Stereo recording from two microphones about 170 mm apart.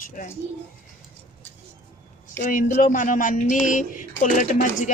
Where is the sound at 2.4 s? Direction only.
50° left (ahead or behind).